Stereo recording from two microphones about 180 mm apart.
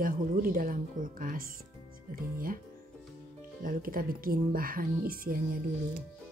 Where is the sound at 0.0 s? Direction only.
50° right (ahead or behind).